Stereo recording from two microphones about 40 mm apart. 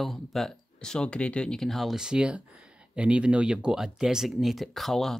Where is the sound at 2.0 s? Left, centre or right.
Centre.